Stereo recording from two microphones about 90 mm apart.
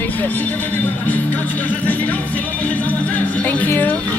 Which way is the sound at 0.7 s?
20° left (ahead or behind).